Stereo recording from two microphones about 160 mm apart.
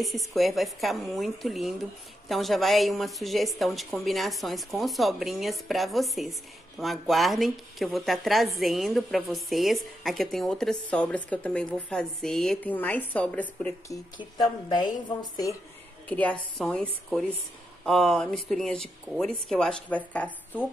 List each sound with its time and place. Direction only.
0.3 s a woman's voice: centre (ahead or behind)
13.8 s a woman's voice: 25° left (ahead or behind)
16.1 s speech: 10° left (ahead or behind)
17.8 s speech: centre (ahead or behind)